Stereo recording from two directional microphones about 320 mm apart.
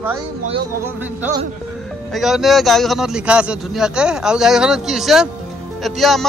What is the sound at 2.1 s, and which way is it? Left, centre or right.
Speech, centre.